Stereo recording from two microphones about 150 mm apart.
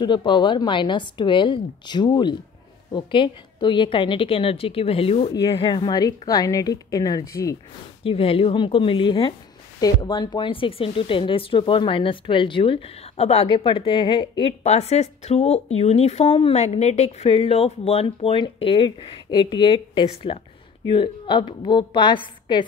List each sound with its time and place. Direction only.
0.0 s a woman's voice: 30° left (ahead or behind)
8.0 s a woman's voice: 40° left (ahead or behind)
14.6 s a woman's voice: 45° left (ahead or behind)